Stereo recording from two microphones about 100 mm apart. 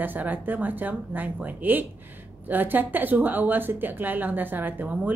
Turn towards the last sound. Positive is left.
turn(degrees=-20)  # may be behind; listen again after turning